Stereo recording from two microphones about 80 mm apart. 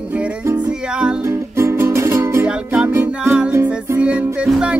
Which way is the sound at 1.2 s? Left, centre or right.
Right.